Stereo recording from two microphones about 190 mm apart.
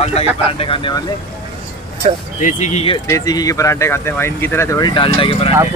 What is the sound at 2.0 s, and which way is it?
Speech, 35° right (ahead or behind).